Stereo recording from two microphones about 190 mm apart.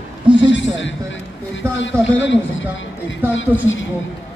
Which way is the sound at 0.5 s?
75° left (ahead or behind).